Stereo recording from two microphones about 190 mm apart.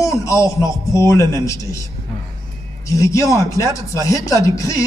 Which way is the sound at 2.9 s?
15° left (ahead or behind).